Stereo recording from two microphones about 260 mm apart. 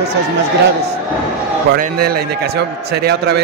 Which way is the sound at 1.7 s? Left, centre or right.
Right.